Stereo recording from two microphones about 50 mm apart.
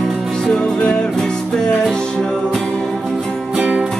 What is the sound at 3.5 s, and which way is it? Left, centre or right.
Music, centre.